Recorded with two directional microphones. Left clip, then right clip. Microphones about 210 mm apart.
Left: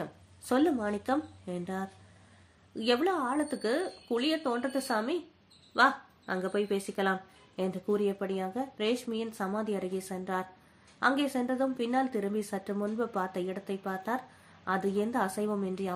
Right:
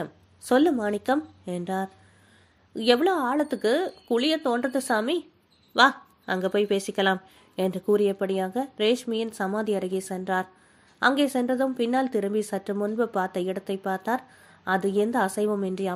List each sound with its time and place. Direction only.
0.0 s speech: 40° right (ahead or behind)